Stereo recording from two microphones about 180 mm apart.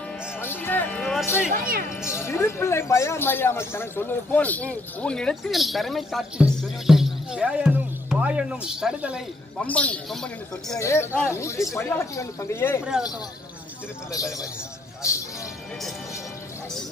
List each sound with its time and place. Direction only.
0.4 s music: 10° left (ahead or behind)
1.5 s speech: 55° right (ahead or behind)
2.1 s speech: 15° left (ahead or behind); by 9.2 s 5° right (ahead or behind)
9.6 s a man's voice: 5° left (ahead or behind)
10.8 s speech: 15° left (ahead or behind)